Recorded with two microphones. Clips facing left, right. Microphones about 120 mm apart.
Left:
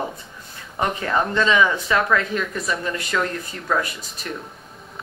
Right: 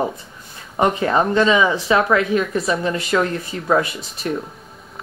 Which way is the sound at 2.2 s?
5° right (ahead or behind).